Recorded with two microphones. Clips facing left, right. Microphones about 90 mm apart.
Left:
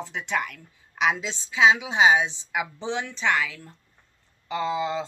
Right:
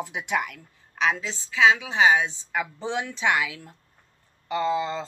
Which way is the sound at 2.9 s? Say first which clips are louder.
Right 1 dB; 5° right (ahead or behind).